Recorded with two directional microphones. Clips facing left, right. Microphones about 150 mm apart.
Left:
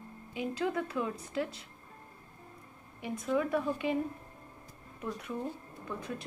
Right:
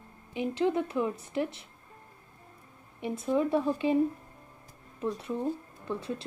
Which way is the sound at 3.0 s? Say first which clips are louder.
Right 3 dB; 30° right (ahead or behind).